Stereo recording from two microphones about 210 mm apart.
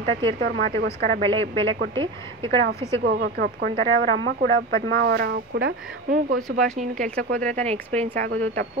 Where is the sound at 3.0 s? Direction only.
55° right (ahead or behind).